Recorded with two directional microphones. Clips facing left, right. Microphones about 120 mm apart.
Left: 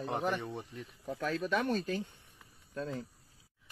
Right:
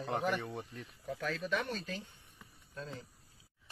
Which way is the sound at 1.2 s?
45° left (ahead or behind).